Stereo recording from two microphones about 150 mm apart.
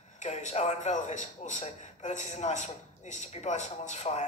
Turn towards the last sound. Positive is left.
turn(degrees=50)  # may be behind; listen again after turning